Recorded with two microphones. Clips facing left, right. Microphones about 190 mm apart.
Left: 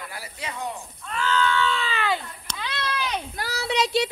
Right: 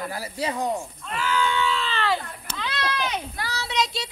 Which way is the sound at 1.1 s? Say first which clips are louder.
Left 1 dB; 10° right (ahead or behind).